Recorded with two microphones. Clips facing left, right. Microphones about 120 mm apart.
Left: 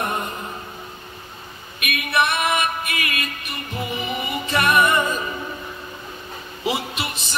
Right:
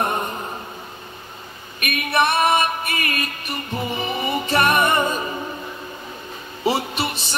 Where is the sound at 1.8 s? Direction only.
40° right (ahead or behind).